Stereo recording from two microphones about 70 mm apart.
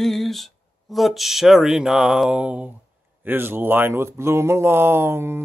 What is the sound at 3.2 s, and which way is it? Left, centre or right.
Speech, right.